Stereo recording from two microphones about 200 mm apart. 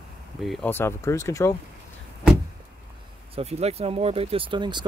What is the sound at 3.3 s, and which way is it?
Speech, 30° right (ahead or behind).